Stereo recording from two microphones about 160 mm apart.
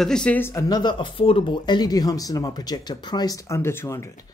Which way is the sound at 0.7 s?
30° left (ahead or behind).